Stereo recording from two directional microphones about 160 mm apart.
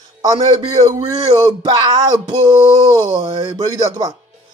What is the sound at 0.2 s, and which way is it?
Speech, 25° right (ahead or behind).